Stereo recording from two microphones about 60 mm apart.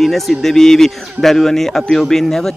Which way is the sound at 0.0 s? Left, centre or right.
Centre.